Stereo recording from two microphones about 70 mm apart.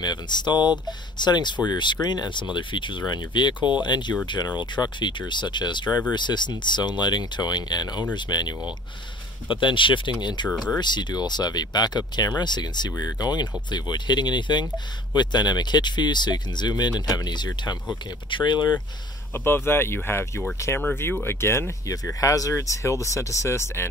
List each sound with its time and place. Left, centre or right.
0.0 s speech: left
10.2 s speech: left
19.3 s speech: left
20.9 s speech: left
22.2 s speech: left